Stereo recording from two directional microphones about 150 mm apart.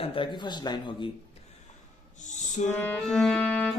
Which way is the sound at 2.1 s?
55° left (ahead or behind).